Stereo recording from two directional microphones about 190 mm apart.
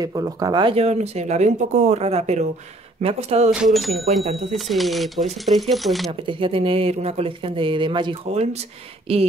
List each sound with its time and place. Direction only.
0.0 s speech: 20° right (ahead or behind); by 3.5 s 35° right (ahead or behind)
3.6 s speech: centre (ahead or behind)
4.1 s speech: 30° right (ahead or behind)
4.5 s speech: centre (ahead or behind)
6.2 s speech: 25° right (ahead or behind)